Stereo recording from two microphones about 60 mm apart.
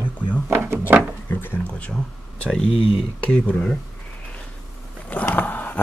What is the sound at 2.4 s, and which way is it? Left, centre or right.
Speech, centre.